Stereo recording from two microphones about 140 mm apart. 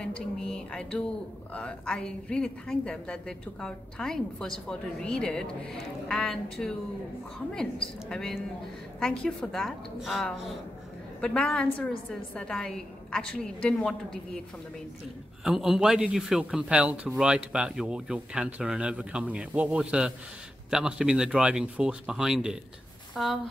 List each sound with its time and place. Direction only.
0.0 s a sound: 5° left (ahead or behind)
1.5 s a woman's voice: 10° left (ahead or behind)
8.1 s a woman's voice: 5° left (ahead or behind)
15.4 s a woman's voice: 5° right (ahead or behind)